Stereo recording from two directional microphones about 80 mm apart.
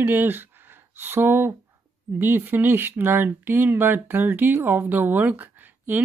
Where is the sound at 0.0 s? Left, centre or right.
Right.